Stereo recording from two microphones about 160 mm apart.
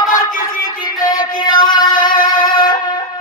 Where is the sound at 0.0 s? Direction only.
60° left (ahead or behind).